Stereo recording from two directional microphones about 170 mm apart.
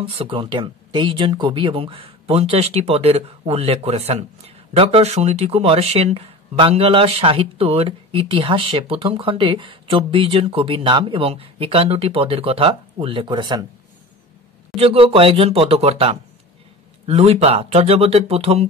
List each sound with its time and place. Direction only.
0.0 s speech: 30° right (ahead or behind)
14.8 s speech: 35° right (ahead or behind)